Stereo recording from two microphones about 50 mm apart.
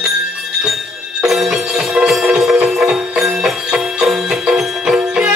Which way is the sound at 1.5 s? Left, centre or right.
Centre.